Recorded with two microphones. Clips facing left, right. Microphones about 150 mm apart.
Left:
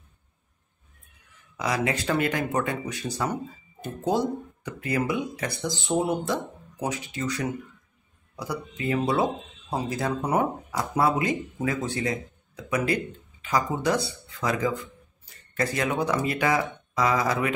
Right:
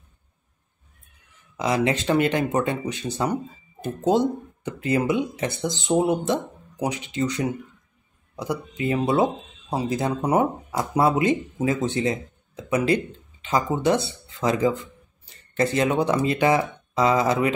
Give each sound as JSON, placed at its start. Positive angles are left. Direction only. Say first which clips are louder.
{"t": 1.6, "sound": "speech", "louder": "right 4 dB", "side_deg": -25}